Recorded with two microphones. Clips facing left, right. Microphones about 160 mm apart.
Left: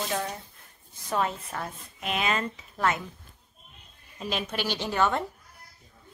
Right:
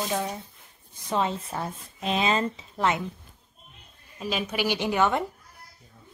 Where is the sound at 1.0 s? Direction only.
20° right (ahead or behind).